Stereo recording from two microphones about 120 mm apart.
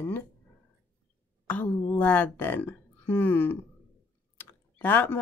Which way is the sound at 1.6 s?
15° left (ahead or behind).